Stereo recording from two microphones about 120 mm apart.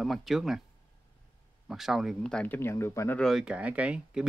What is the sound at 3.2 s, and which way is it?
Speech, centre (ahead or behind).